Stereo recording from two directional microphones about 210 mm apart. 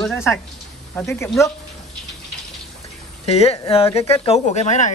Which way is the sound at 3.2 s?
30° left (ahead or behind).